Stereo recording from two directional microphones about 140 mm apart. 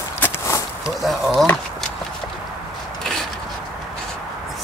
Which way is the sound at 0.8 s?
5° right (ahead or behind).